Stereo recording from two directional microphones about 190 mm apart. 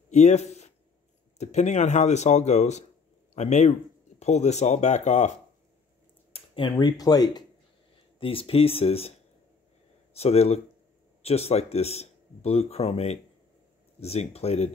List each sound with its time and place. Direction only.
0.1 s a sound: 35° left (ahead or behind)
1.4 s speech: 35° left (ahead or behind)
6.3 s speech: 25° left (ahead or behind)
10.1 s speech: 35° left (ahead or behind)